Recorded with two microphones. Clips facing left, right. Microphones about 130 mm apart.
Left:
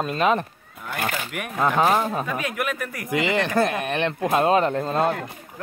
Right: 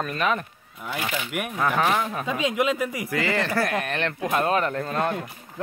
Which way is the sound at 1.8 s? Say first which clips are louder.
Left 3 dB; 35° left (ahead or behind).